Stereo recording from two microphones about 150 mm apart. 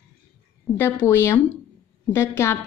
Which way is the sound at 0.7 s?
15° left (ahead or behind).